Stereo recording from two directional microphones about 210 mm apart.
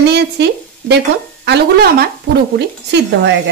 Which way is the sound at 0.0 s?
55° right (ahead or behind).